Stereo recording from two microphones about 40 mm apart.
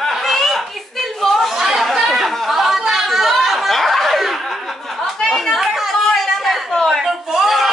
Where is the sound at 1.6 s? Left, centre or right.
Centre.